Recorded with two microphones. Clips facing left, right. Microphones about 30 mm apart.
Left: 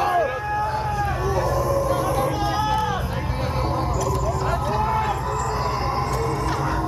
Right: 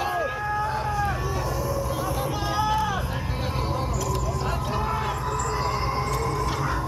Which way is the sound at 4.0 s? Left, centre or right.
Centre.